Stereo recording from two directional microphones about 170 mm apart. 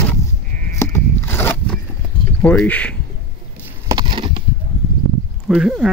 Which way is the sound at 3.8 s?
25° right (ahead or behind).